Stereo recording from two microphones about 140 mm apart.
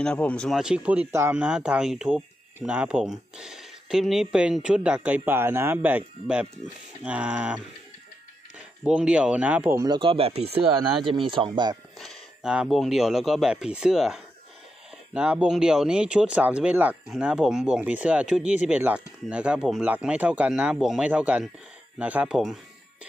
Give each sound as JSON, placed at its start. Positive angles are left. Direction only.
{"t": 0.0, "sound": "speech", "side_deg": 10}
{"t": 0.6, "sound": "speech", "side_deg": -5}
{"t": 8.8, "sound": "speech", "side_deg": -5}
{"t": 9.8, "sound": "speech", "side_deg": -35}
{"t": 12.0, "sound": "speech", "side_deg": 0}